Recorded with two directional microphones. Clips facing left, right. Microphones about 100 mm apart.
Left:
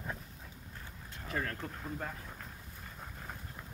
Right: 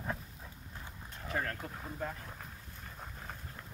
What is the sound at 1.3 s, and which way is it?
Speech, 35° right (ahead or behind).